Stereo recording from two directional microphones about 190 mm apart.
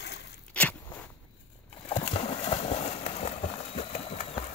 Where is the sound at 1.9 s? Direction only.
30° left (ahead or behind).